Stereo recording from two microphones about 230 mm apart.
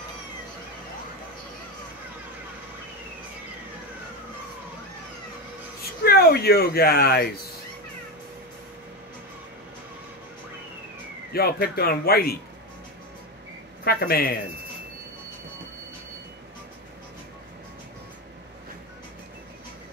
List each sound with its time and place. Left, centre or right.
5.8 s speech: left
11.3 s speech: left
13.8 s speech: left